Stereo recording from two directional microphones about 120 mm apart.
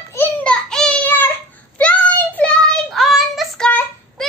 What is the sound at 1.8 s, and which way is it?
Child singing, 10° left (ahead or behind).